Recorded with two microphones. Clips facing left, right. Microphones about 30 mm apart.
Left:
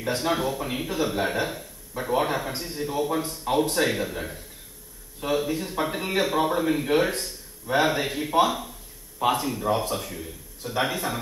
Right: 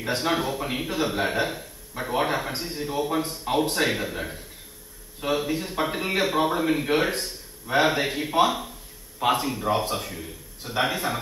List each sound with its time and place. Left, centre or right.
0.0 s a man's voice: right
2.5 s a man's voice: right
2.8 s a man's voice: centre
6.9 s a man's voice: right